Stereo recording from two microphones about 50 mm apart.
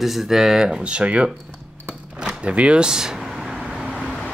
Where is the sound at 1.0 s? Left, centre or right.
Right.